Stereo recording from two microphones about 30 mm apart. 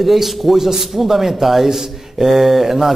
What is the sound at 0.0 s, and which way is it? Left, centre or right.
A man's voice, centre.